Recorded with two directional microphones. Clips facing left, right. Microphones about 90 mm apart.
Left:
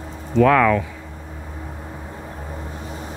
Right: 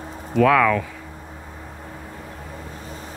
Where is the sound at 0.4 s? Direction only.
5° left (ahead or behind).